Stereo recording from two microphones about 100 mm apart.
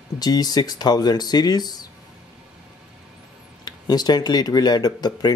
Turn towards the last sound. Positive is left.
turn(degrees=40)  # may be behind; listen again after turning